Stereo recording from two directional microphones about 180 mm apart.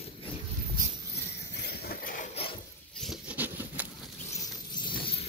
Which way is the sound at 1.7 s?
60° left (ahead or behind).